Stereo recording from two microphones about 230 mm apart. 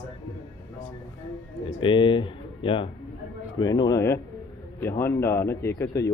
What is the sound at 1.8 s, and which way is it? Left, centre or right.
Speech, left.